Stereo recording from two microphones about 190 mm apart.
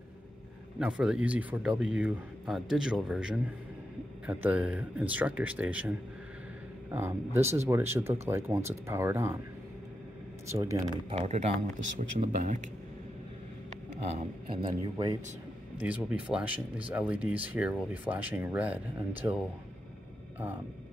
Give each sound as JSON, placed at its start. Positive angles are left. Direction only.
{"t": 0.7, "sound": "speech", "side_deg": -5}
{"t": 10.5, "sound": "speech", "side_deg": -15}
{"t": 11.1, "sound": "speech", "side_deg": -35}
{"t": 14.1, "sound": "speech", "side_deg": -25}
{"t": 15.8, "sound": "speech", "side_deg": -5}